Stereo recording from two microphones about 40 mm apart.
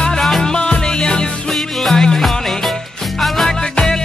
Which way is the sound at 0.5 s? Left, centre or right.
Left.